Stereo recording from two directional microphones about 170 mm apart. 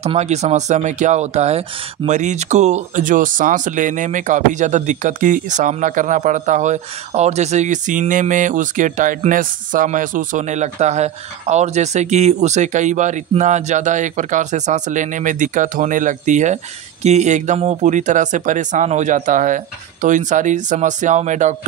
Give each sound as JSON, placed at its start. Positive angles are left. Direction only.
{"t": 0.0, "sound": "speech", "side_deg": -40}